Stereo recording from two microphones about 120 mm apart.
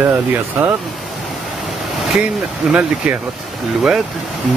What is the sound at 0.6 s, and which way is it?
Speech, 15° right (ahead or behind).